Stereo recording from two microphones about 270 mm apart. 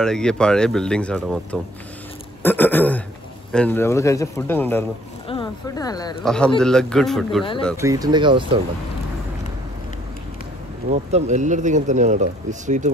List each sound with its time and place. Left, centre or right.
0.0 s speech: centre
6.2 s speech: centre
7.7 s speech: centre
10.9 s speech: right